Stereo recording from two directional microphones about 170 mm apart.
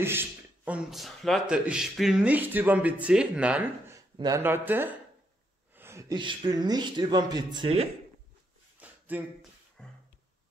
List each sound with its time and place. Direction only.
0.0 s a man's voice: 15° right (ahead or behind); by 7.9 s 35° right (ahead or behind)
8.7 s a sound: 10° right (ahead or behind)
9.8 s music: 5° left (ahead or behind)